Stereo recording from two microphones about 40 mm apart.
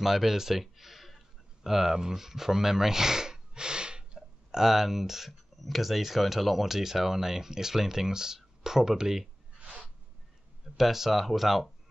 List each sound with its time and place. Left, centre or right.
0.0 s speech: centre
9.6 s a sound: right
10.8 s speech: centre